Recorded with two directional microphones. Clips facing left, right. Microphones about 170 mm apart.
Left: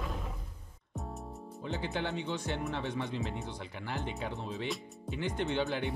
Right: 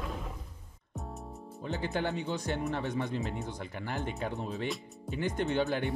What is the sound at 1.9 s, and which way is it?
Speech, 45° right (ahead or behind).